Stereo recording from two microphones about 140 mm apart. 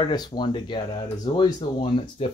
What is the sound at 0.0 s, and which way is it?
Speech, 30° left (ahead or behind).